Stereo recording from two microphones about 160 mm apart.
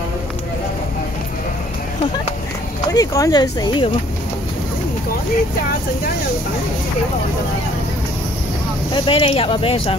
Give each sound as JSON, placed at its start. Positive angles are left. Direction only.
{"t": 2.9, "sound": "speech", "side_deg": 20}
{"t": 8.9, "sound": "speech", "side_deg": 30}